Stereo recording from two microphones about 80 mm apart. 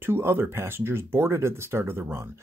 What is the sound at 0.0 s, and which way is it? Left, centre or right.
Speech, right.